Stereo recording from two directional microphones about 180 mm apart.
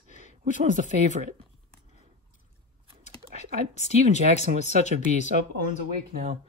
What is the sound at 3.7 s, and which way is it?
Speech, 40° left (ahead or behind).